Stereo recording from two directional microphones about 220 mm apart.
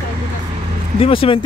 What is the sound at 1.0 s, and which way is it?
Speech, 25° left (ahead or behind).